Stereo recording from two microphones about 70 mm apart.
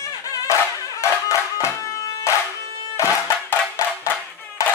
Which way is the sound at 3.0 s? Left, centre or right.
Left.